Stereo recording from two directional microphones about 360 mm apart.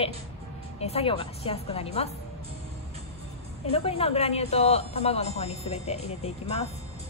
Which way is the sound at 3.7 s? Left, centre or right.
Centre.